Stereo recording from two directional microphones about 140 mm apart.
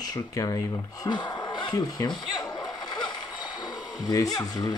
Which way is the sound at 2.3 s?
30° left (ahead or behind).